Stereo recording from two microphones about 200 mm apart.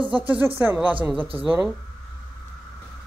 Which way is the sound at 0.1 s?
5° right (ahead or behind).